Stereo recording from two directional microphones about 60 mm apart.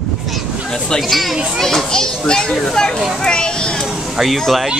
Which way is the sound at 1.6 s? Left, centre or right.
Centre.